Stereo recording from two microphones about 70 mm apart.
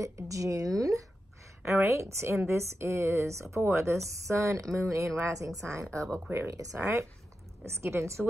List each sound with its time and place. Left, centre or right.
0.0 s a woman's voice: right
1.8 s a woman's voice: right
7.6 s a woman's voice: right